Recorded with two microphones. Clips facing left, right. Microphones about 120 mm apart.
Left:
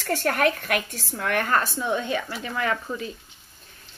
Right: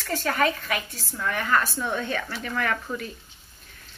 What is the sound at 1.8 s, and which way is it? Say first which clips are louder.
Speech: left 2 dB; 15° left (ahead or behind).